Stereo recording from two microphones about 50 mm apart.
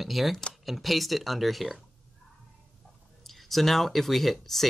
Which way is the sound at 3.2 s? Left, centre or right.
Centre.